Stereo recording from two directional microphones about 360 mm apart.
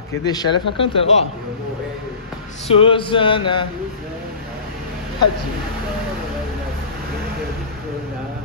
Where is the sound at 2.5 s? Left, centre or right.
Centre.